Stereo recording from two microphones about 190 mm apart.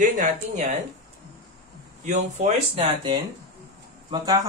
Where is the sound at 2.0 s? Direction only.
40° right (ahead or behind).